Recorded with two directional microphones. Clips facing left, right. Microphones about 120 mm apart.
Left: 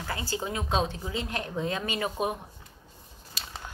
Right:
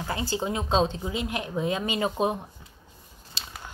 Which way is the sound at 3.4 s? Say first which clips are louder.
Even; 25° right (ahead or behind).